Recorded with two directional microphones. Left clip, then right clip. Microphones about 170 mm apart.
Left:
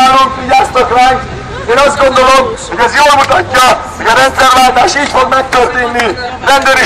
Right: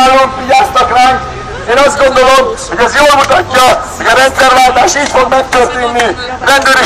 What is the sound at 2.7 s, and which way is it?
A man's voice, 20° right (ahead or behind).